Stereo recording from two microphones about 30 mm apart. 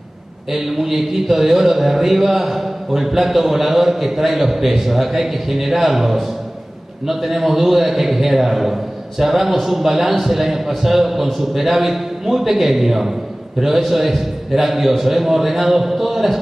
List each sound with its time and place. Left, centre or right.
0.5 s a man's voice: centre